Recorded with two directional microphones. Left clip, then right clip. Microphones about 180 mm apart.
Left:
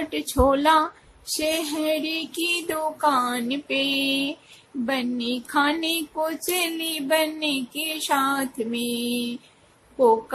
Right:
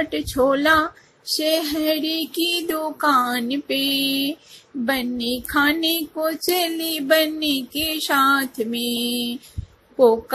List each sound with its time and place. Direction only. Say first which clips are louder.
0.1 s speech: left 2 dB; 5° right (ahead or behind)